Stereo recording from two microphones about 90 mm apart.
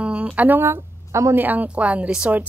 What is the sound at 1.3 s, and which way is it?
Speech, 20° right (ahead or behind).